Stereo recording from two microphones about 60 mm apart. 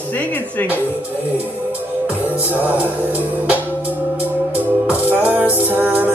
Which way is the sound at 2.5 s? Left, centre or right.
Right.